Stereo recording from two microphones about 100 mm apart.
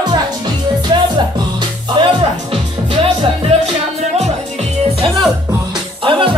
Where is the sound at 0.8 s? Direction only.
45° right (ahead or behind).